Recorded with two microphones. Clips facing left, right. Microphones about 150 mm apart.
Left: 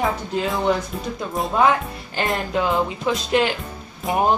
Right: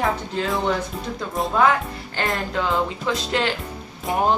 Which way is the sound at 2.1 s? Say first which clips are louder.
Left 2 dB; 20° left (ahead or behind).